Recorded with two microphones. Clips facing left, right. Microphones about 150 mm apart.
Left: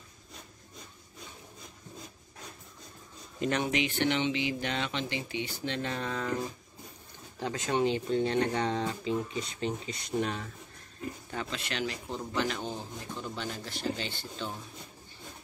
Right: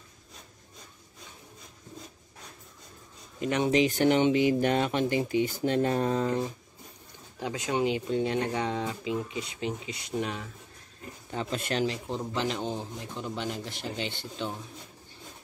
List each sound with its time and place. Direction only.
3.3 s speech: 15° right (ahead or behind)
3.7 s speech: 40° right (ahead or behind)
7.3 s speech: 10° right (ahead or behind)
11.5 s speech: 45° right (ahead or behind)
11.8 s a man's voice: 25° right (ahead or behind)